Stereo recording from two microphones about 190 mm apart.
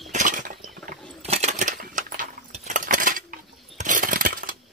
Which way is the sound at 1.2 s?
35° right (ahead or behind).